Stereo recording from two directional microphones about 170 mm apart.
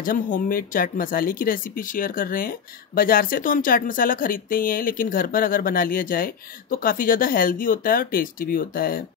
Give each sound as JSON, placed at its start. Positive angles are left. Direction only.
{"t": 0.0, "sound": "speech", "side_deg": 55}